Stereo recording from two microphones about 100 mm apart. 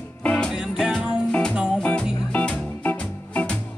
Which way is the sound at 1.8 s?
10° left (ahead or behind).